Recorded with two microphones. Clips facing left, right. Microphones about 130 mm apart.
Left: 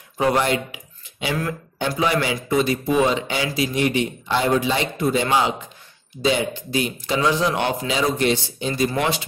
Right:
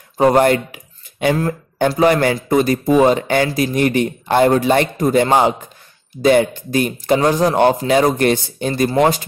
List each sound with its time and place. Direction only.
0.2 s speech: 50° right (ahead or behind)
2.0 s speech: 50° right (ahead or behind)